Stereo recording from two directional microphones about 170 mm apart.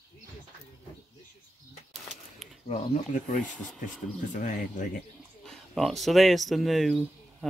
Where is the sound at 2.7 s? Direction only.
50° left (ahead or behind).